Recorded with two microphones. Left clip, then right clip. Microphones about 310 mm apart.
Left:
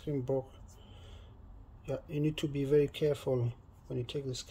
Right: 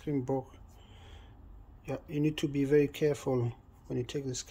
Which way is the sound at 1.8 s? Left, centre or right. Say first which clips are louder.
Right 2 dB; centre.